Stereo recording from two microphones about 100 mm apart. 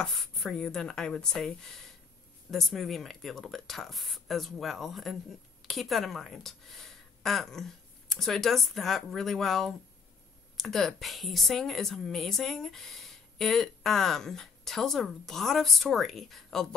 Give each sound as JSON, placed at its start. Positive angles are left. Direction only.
{"t": 0.0, "sound": "a woman's voice", "side_deg": 5}